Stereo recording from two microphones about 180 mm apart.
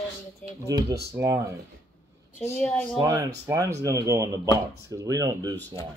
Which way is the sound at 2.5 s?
10° left (ahead or behind).